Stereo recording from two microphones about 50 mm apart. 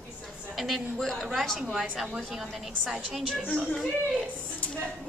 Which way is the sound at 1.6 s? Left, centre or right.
Centre.